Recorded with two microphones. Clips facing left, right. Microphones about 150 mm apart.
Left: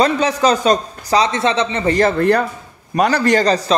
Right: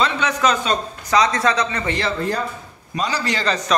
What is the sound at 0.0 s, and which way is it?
A man's voice, 35° left (ahead or behind).